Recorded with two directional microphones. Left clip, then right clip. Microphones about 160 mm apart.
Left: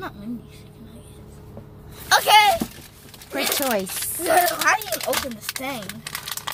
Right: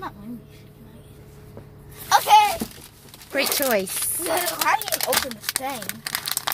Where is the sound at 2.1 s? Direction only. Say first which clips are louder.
Even; 20° left (ahead or behind).